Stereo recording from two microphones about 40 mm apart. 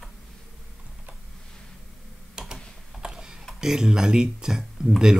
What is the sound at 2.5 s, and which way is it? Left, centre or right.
Typing, centre.